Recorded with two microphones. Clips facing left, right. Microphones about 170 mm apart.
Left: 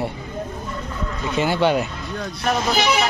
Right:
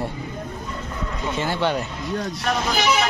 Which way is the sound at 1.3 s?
15° left (ahead or behind).